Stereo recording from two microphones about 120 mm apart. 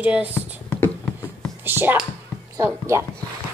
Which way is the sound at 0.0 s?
10° right (ahead or behind).